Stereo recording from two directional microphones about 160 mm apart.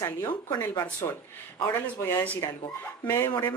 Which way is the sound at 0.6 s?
10° left (ahead or behind).